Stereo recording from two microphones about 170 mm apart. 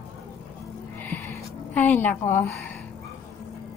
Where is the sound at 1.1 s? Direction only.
10° left (ahead or behind).